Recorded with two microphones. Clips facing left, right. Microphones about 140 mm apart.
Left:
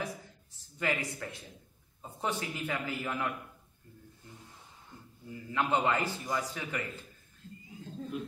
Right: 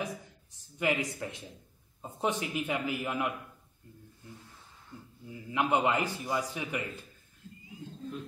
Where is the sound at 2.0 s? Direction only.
20° right (ahead or behind).